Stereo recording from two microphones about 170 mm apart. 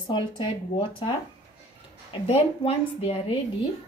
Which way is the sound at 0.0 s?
25° left (ahead or behind).